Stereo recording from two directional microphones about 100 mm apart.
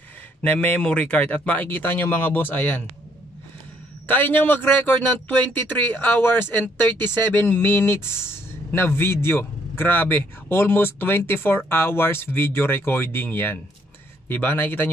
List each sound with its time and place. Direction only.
0.4 s speech: 15° left (ahead or behind)
4.1 s speech: 20° left (ahead or behind)